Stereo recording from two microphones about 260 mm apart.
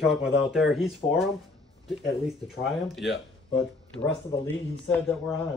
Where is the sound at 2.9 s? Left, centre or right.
Centre.